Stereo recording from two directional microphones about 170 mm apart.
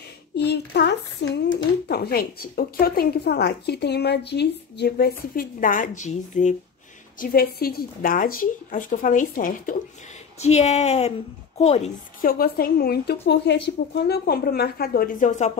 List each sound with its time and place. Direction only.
0.4 s speech: 80° left; by 6.5 s 45° left (ahead or behind)
7.2 s a woman's voice: 60° left (ahead or behind)
10.4 s a woman's voice: 40° left (ahead or behind)
12.2 s a woman's voice: 60° left (ahead or behind)